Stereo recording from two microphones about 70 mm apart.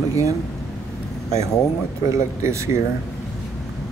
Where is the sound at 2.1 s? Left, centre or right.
Right.